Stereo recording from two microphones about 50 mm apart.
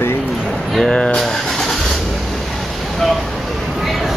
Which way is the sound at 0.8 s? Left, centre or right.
Centre.